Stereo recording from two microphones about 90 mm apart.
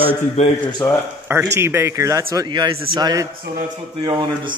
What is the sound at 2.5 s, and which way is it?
Speech, 55° right (ahead or behind).